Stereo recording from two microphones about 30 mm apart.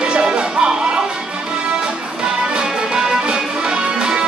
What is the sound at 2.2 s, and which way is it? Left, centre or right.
Music, right.